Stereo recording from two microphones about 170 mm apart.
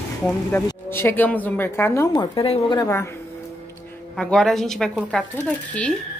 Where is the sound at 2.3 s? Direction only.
30° left (ahead or behind).